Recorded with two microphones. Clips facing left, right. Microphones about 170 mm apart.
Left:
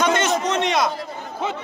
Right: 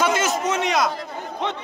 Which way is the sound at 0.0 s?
5° right (ahead or behind).